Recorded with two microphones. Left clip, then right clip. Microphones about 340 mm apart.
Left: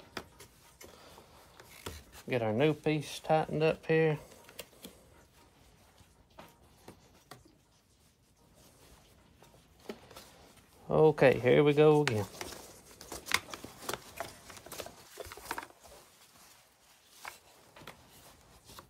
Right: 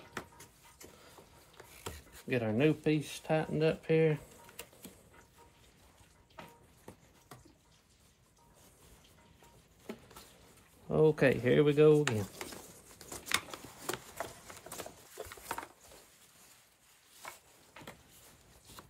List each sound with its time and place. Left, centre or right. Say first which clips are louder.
2.2 s speech: left 1 dB; centre
10.9 s speech: left 3 dB; centre
13.0 s a sound: left 2 dB; centre